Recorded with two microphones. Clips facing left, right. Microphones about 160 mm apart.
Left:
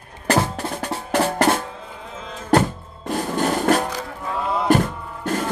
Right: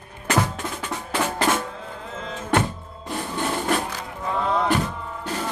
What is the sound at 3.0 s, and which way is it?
Music, 45° left (ahead or behind).